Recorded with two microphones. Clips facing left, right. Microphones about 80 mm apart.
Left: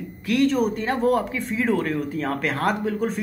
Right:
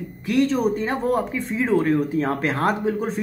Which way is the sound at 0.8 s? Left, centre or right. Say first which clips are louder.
Left 1 dB; centre.